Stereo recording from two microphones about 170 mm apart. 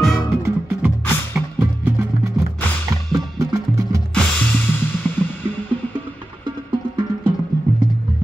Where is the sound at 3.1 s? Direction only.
20° right (ahead or behind).